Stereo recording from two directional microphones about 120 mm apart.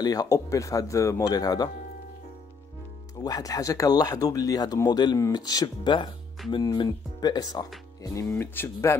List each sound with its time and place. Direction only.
0.0 s speech: 30° left (ahead or behind)
3.2 s speech: 30° left (ahead or behind)